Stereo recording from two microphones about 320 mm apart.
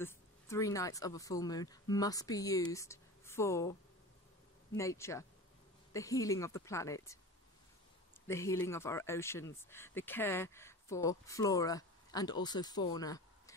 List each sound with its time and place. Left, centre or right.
0.0 s speech: centre
4.7 s speech: centre
8.3 s speech: centre